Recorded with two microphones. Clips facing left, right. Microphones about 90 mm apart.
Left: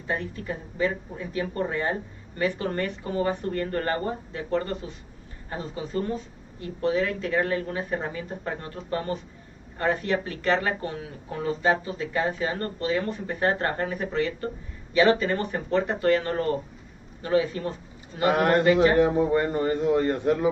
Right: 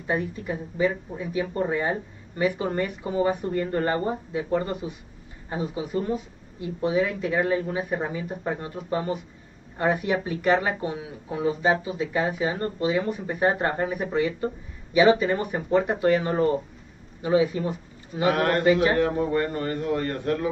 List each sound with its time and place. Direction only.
0.0 s a man's voice: 15° right (ahead or behind)
18.3 s a man's voice: 20° left (ahead or behind)